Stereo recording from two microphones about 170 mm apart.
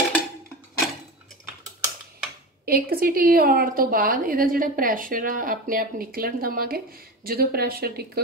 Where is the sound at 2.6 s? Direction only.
60° right (ahead or behind).